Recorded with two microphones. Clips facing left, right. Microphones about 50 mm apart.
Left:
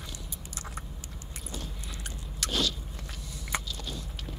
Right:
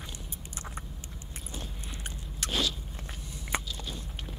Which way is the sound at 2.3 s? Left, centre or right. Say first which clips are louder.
Left 1 dB; centre.